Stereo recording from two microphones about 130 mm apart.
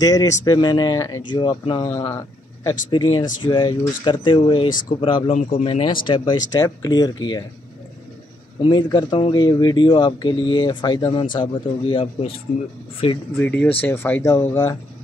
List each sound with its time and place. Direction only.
0.0 s speech: 30° left (ahead or behind)
5.3 s speech: 50° left (ahead or behind); by 7.4 s 30° left (ahead or behind)
8.6 s speech: 35° left (ahead or behind)
13.4 s speech: 15° left (ahead or behind)